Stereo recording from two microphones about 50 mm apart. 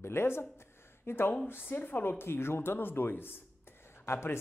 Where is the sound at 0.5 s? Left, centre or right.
Left.